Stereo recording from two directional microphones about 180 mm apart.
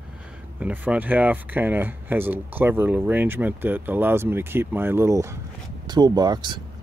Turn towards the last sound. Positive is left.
turn(degrees=-25)  # may be behind; listen again after turning